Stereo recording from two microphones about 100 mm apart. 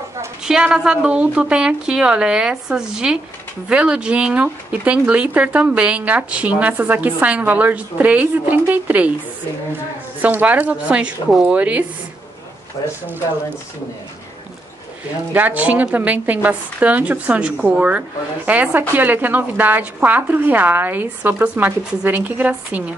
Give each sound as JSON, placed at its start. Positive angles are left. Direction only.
{"t": 0.4, "sound": "speech", "side_deg": -5}
{"t": 10.2, "sound": "speech", "side_deg": -15}
{"t": 15.3, "sound": "speech", "side_deg": -15}